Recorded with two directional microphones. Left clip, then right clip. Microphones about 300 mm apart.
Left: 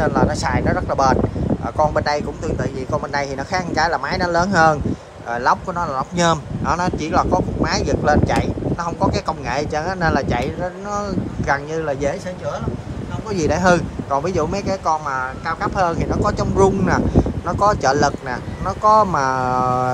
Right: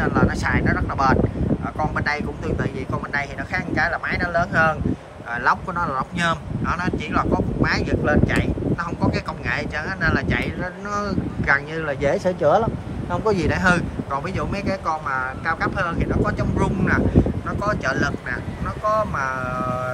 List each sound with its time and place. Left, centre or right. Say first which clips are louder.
0.0 s speech: left 3 dB; centre
19.1 s speech: left 6 dB; centre